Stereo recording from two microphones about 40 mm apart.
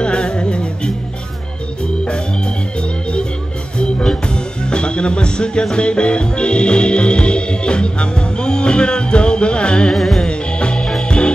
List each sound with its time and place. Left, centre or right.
0.0 s music: left
2.8 s organ: left
3.7 s music: left
9.9 s music: centre
10.2 s music: left